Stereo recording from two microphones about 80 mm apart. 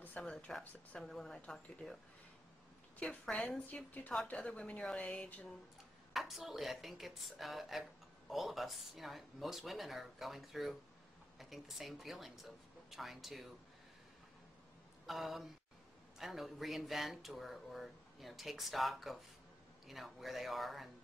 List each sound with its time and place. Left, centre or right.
0.2 s speech: centre
3.0 s speech: centre
6.1 s speech: centre
15.0 s speech: centre